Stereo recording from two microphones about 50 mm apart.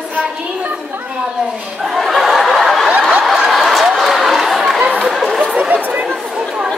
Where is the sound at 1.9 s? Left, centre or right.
Centre.